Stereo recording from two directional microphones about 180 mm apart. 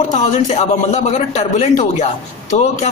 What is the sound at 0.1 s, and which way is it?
Speech, 40° left (ahead or behind).